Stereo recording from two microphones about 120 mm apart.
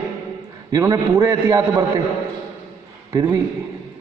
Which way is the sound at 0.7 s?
30° right (ahead or behind).